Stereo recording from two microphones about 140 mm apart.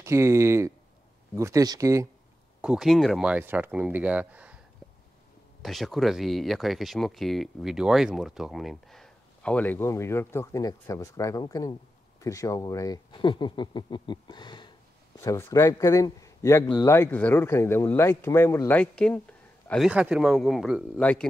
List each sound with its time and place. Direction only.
0.0 s speech: 20° right (ahead or behind)
2.6 s speech: 5° right (ahead or behind)
5.6 s speech: centre (ahead or behind); by 14.7 s 35° left (ahead or behind)
15.1 s a man's voice: 20° left (ahead or behind)
19.9 s speech: 5° right (ahead or behind)
21.0 s speech: 10° left (ahead or behind)